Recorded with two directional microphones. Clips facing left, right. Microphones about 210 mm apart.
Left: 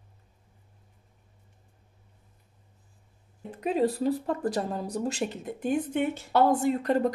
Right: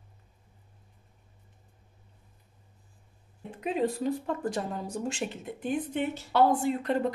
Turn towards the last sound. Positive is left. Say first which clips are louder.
# left 2 dB
turn(degrees=40)  # may be behind; listen again after turning